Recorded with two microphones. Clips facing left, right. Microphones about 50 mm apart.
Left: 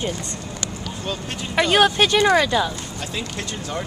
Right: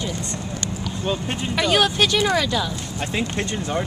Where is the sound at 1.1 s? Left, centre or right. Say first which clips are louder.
Right 5 dB; right.